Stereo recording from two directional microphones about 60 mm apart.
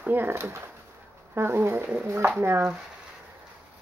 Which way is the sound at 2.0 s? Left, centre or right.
Right.